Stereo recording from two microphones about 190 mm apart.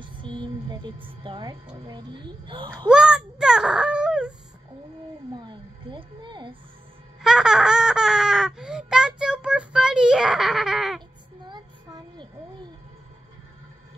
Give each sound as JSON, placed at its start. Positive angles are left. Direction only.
{"t": 0.0, "sound": "a sound", "side_deg": -25}
{"t": 1.2, "sound": "a woman's voice", "side_deg": -25}
{"t": 2.9, "sound": "speech", "side_deg": -5}
{"t": 5.4, "sound": "a woman's voice", "side_deg": -25}
{"t": 7.2, "sound": "baby laughter", "side_deg": -5}
{"t": 11.4, "sound": "child singing", "side_deg": -25}